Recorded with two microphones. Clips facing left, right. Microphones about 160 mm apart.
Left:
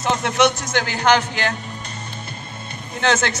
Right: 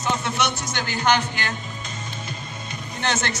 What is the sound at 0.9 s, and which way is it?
Speech, 90° left.